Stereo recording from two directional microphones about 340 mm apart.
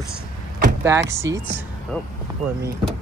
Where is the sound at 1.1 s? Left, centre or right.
Centre.